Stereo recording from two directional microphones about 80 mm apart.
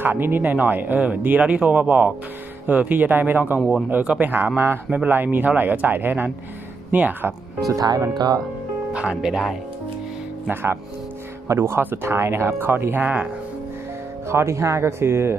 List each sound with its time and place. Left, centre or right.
0.0 s speech: right
7.6 s speech: right
8.1 s speech: right
9.1 s speech: centre
10.5 s speech: right
14.3 s speech: right